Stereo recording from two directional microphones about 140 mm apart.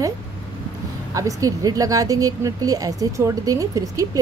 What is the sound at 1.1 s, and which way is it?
A woman's voice, 25° right (ahead or behind).